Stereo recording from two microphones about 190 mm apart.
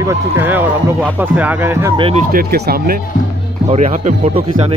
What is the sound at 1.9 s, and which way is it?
Speech, 25° right (ahead or behind).